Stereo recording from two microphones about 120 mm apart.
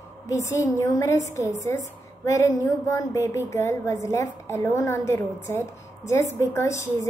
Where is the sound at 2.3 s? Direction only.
25° left (ahead or behind).